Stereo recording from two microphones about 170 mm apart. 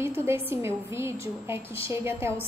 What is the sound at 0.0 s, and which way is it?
A woman's voice, 15° right (ahead or behind).